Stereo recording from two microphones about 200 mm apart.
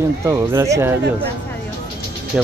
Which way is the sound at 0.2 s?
15° right (ahead or behind).